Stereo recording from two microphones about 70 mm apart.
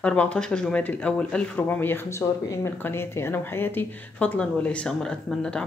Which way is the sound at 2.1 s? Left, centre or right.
Left.